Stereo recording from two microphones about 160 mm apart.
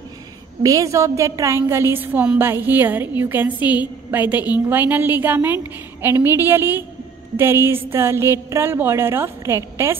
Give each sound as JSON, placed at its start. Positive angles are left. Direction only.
{"t": 0.6, "sound": "a woman's voice", "side_deg": -20}